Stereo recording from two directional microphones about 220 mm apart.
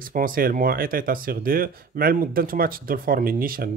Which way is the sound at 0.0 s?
40° right (ahead or behind).